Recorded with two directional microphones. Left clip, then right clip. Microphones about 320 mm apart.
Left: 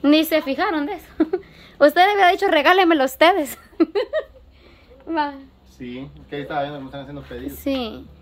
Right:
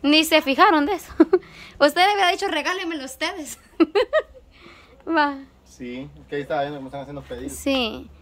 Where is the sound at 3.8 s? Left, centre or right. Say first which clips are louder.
Right 2 dB; centre.